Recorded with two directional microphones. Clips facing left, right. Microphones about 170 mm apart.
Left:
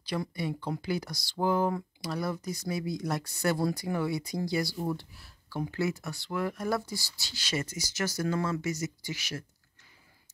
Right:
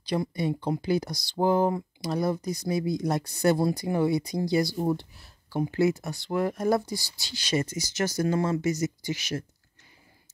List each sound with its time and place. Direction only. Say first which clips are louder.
0.1 s speech: right 5 dB; 20° right (ahead or behind)
6.3 s speech: right 6 dB; 40° right (ahead or behind)
6.7 s speech: right 6 dB; 15° right (ahead or behind)